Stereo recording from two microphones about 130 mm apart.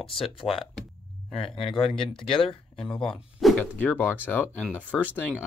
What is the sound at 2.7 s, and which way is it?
Speech, 5° left (ahead or behind).